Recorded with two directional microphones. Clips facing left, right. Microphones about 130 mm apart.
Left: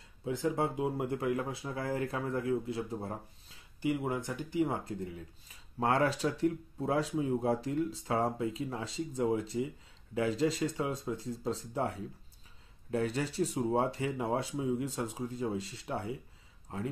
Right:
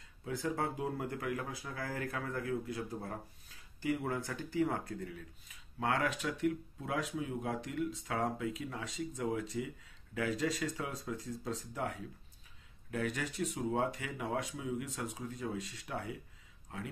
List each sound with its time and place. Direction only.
0.2 s speech: 20° left (ahead or behind)
5.8 s speech: 35° left (ahead or behind)